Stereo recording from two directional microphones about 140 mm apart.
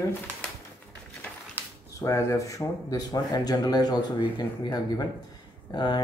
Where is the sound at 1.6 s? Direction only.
15° right (ahead or behind).